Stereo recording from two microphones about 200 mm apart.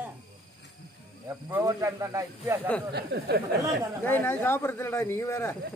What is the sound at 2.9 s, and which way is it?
Speech, 55° right (ahead or behind).